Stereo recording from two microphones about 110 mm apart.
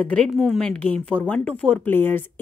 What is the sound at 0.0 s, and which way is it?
Speech, 10° left (ahead or behind).